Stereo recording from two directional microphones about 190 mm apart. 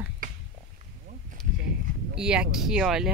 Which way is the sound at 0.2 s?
45° right (ahead or behind).